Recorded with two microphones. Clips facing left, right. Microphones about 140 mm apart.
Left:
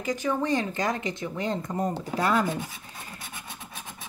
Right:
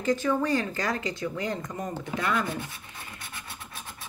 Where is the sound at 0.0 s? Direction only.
15° left (ahead or behind); by 2.4 s 35° left (ahead or behind).